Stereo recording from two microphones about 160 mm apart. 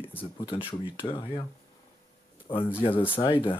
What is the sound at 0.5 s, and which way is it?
Speech, 30° left (ahead or behind).